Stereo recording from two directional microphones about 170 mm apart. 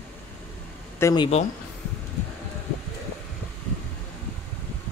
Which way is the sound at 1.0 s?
20° left (ahead or behind).